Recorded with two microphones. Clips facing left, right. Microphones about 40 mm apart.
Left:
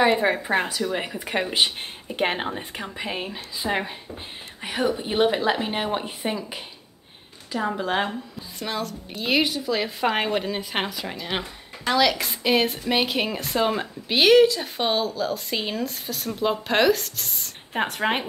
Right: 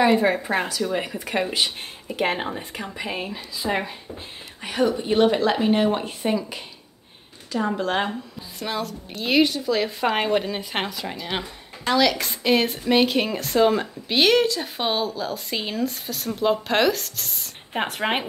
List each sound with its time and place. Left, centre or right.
0.0 s a woman's voice: centre